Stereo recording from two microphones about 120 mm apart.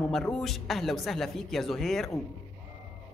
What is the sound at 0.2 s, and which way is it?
Speech, 5° left (ahead or behind).